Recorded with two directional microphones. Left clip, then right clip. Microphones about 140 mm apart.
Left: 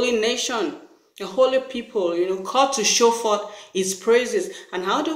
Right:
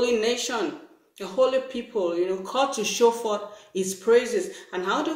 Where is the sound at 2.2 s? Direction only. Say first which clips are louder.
Left 5 dB; 10° right (ahead or behind).